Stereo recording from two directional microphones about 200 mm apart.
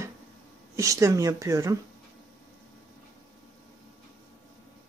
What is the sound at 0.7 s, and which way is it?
A woman's voice, 15° right (ahead or behind).